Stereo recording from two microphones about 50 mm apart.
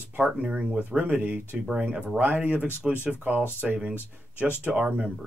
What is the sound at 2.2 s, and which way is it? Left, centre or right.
Speech, right.